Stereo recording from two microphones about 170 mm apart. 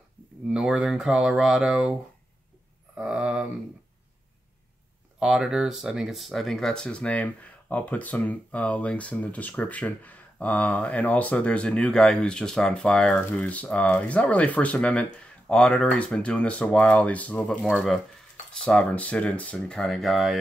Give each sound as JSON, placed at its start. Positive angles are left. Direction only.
{"t": 0.5, "sound": "speech", "side_deg": -5}
{"t": 3.0, "sound": "speech", "side_deg": -5}
{"t": 5.2, "sound": "speech", "side_deg": 0}